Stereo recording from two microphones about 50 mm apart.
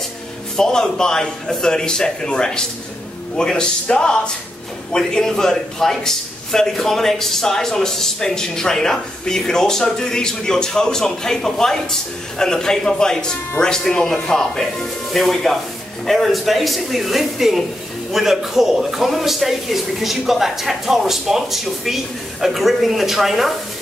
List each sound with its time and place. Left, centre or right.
0.6 s a man's voice: centre
15.1 s a man's voice: centre